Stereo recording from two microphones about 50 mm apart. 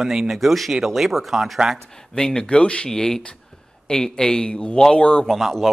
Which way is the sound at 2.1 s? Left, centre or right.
Centre.